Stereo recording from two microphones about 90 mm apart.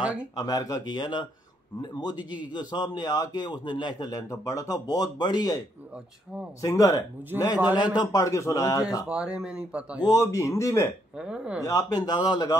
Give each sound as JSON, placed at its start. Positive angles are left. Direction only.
{"t": 0.0, "sound": "speech", "side_deg": -15}
{"t": 0.4, "sound": "a man's voice", "side_deg": 40}
{"t": 4.1, "sound": "a man's voice", "side_deg": 35}
{"t": 6.6, "sound": "speech", "side_deg": 35}
{"t": 7.7, "sound": "a man's voice", "side_deg": 55}
{"t": 8.2, "sound": "speech", "side_deg": 35}
{"t": 9.0, "sound": "speech", "side_deg": -10}
{"t": 9.9, "sound": "a man's voice", "side_deg": 45}
{"t": 10.2, "sound": "speech", "side_deg": 35}
{"t": 11.1, "sound": "speech", "side_deg": -10}
{"t": 11.6, "sound": "a man's voice", "side_deg": 45}